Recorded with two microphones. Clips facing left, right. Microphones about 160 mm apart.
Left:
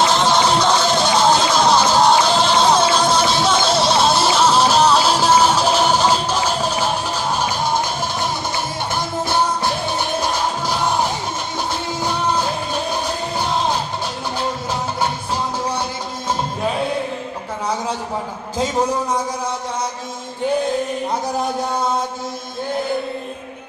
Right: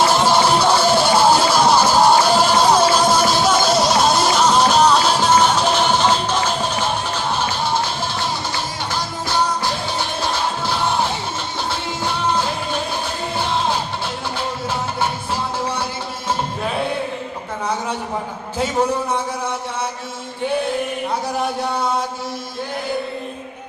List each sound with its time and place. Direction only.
0.0 s music: 10° right (ahead or behind); by 6.7 s 10° left (ahead or behind)